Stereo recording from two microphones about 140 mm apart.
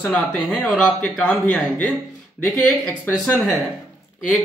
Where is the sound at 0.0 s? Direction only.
10° left (ahead or behind).